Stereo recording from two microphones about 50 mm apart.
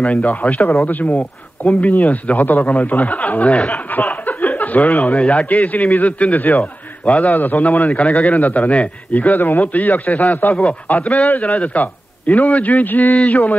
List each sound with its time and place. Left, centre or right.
0.1 s a man's voice: left
3.9 s a man's voice: left
10.5 s a man's voice: left
10.9 s a man's voice: left